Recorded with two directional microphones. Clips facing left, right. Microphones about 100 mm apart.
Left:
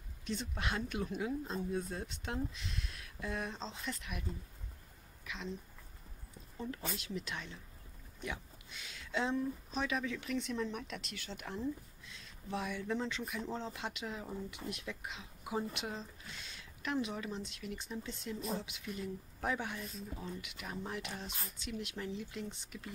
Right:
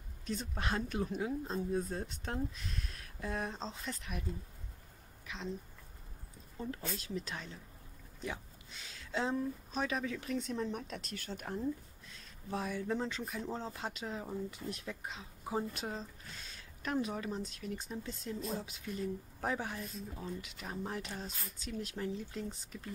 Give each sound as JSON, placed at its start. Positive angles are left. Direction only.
{"t": 0.3, "sound": "speech", "side_deg": -40}
{"t": 6.6, "sound": "speech", "side_deg": -40}